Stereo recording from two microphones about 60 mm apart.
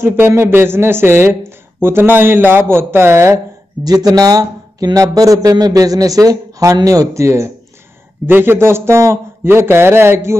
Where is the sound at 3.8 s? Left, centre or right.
Right.